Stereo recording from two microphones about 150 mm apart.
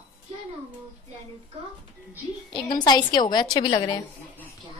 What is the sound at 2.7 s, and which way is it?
A woman's voice, 30° left (ahead or behind).